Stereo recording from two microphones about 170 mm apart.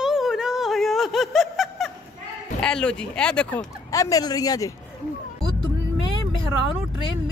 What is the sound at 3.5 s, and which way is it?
Speech, 20° left (ahead or behind).